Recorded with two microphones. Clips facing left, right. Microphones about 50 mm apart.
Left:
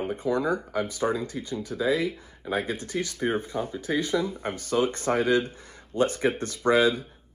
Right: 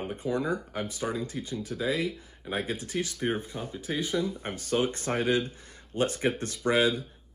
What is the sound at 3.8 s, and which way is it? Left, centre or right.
Speech, right.